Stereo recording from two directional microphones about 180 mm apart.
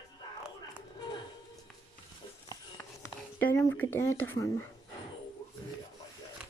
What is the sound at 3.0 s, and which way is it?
Speech, 10° left (ahead or behind).